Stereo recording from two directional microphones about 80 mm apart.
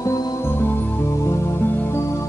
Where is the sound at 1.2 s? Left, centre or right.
Left.